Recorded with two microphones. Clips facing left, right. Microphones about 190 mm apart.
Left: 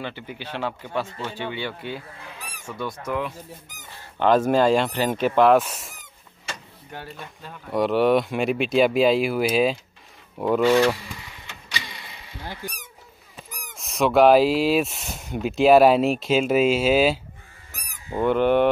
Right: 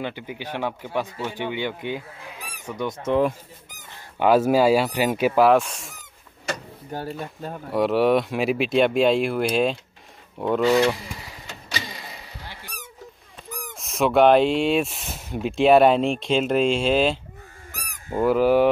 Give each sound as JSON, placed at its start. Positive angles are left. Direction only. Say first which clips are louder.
{"t": 0.0, "sound": "speech", "louder": "right 3 dB", "side_deg": -15}
{"t": 4.2, "sound": "speech", "louder": "right 1 dB", "side_deg": -10}
{"t": 6.5, "sound": "speech", "louder": "right 7 dB", "side_deg": -40}
{"t": 7.7, "sound": "speech", "louder": "even", "side_deg": 0}
{"t": 12.6, "sound": "speech", "louder": "left 8 dB", "side_deg": 45}
{"t": 13.7, "sound": "speech", "louder": "even", "side_deg": 0}